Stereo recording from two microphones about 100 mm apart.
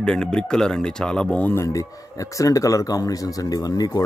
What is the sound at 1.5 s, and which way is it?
Speech, 30° left (ahead or behind).